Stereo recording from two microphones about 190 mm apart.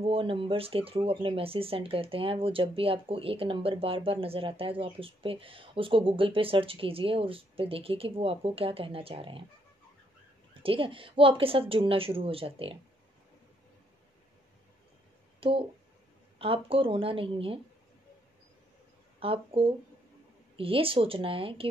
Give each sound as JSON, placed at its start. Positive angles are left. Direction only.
{"t": 0.0, "sound": "speech", "side_deg": -30}
{"t": 10.6, "sound": "speech", "side_deg": -30}
{"t": 15.4, "sound": "speech", "side_deg": -30}
{"t": 19.1, "sound": "speech", "side_deg": -30}